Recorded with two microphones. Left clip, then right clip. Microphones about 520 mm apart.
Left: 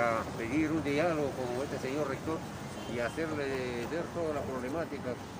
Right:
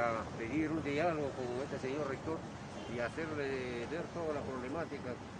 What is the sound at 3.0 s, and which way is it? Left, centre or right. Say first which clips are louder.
Speech: left 4 dB; right.